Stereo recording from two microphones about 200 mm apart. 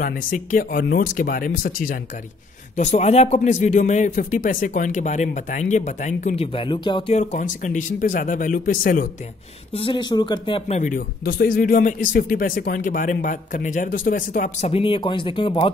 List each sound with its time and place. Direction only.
0.0 s speech: 45° left (ahead or behind)
9.8 s speech: 25° left (ahead or behind)
10.8 s speech: 45° left (ahead or behind)
14.7 s speech: 25° left (ahead or behind)